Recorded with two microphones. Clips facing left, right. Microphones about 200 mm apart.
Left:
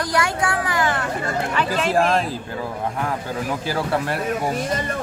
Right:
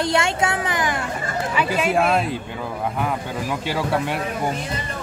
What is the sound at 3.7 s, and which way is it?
Speech, centre (ahead or behind).